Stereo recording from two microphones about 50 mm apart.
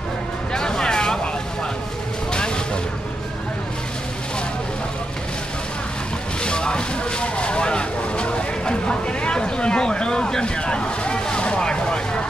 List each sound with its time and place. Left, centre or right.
0.5 s a sound: centre
2.3 s vehicle: centre
6.4 s vehicle: centre